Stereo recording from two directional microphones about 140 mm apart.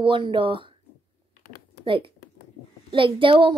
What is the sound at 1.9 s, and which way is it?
A woman's voice, 40° right (ahead or behind).